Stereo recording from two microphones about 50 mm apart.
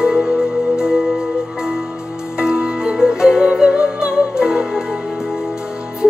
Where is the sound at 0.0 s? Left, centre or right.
Centre.